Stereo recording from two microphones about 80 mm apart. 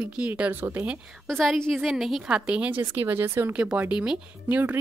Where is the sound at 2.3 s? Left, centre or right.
Centre; by 3.5 s right.